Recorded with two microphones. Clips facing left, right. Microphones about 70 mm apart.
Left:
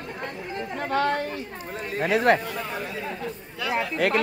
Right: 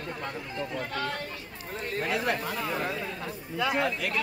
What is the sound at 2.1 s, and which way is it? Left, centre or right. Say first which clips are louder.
Speech: left 11 dB; left.